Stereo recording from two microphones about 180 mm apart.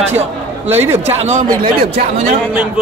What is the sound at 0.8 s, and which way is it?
Speech, 15° right (ahead or behind).